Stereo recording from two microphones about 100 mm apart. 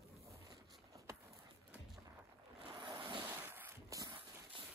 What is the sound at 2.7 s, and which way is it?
Ocean, 55° right (ahead or behind).